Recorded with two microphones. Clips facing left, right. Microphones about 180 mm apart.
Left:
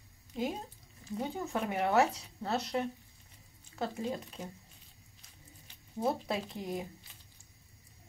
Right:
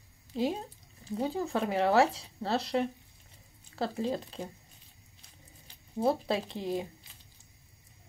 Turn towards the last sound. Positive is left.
turn(degrees=-30)  # may be behind; listen again after turning